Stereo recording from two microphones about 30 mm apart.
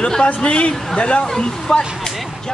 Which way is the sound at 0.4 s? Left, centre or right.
Left.